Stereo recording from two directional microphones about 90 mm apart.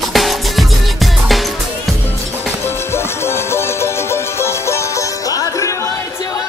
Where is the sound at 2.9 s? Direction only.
30° left (ahead or behind).